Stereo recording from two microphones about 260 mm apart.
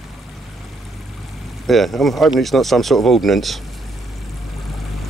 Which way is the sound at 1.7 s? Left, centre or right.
Centre.